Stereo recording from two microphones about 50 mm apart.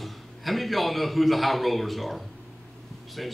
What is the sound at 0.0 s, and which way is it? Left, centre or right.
A man's voice, centre.